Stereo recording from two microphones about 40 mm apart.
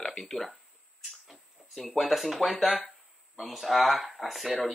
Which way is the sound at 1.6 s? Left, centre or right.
Centre.